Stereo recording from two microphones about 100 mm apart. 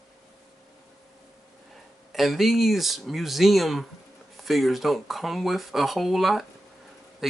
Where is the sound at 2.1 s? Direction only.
Centre (ahead or behind).